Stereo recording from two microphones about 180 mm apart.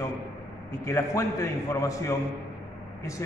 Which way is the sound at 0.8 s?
15° left (ahead or behind).